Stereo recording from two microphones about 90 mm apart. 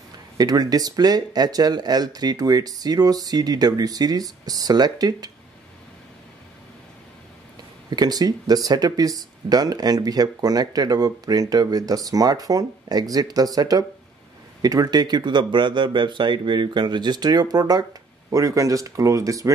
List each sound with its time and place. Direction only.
0.4 s speech: 45° right (ahead or behind)
7.9 s speech: 45° right (ahead or behind)